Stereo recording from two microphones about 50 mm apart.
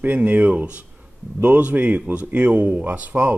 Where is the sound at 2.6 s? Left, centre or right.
Right.